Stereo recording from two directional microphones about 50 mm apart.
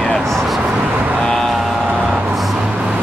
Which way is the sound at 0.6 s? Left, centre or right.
Right.